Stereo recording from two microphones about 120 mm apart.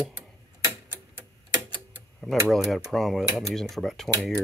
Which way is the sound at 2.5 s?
Centre (ahead or behind).